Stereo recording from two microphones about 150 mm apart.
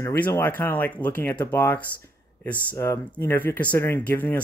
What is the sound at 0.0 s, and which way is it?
Speech, 15° left (ahead or behind).